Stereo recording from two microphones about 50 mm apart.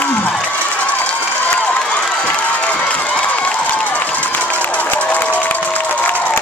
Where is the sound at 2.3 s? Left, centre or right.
Left.